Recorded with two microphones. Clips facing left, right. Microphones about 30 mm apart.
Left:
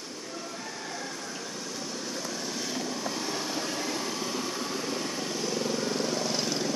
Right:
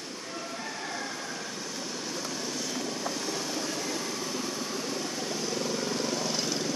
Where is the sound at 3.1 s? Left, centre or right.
Centre.